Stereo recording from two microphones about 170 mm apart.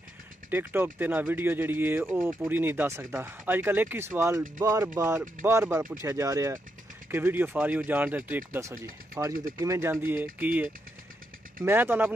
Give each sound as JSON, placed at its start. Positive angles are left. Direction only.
{"t": 0.5, "sound": "speech", "side_deg": -10}